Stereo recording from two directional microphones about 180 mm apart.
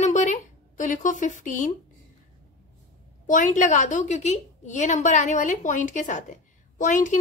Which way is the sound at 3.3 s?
45° left (ahead or behind).